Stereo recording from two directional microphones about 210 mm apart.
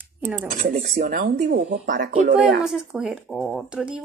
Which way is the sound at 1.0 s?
45° right (ahead or behind).